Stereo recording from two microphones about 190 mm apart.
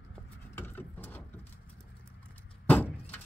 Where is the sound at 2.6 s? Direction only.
10° left (ahead or behind).